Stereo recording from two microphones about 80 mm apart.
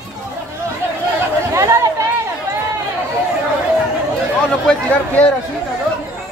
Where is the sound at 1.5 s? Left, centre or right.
Right.